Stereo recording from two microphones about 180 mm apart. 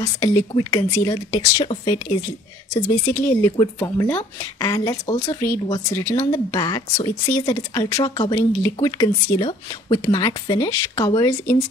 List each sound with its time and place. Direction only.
0.0 s a woman's voice: 25° left (ahead or behind)
3.1 s a woman's voice: 15° left (ahead or behind)